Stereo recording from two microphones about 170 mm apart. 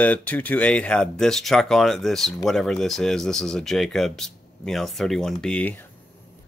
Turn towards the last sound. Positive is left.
turn(degrees=10)  # may be behind; listen again after turning